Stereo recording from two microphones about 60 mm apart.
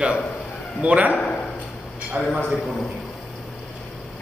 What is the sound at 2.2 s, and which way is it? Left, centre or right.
Speech, right.